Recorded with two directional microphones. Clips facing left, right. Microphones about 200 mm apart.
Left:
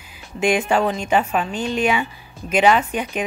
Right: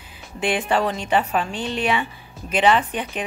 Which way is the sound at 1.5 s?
35° right (ahead or behind).